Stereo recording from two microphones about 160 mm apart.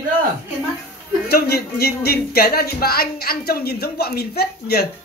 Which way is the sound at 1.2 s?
80° left.